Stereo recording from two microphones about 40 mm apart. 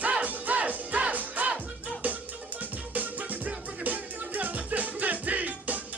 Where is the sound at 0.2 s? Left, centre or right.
Right.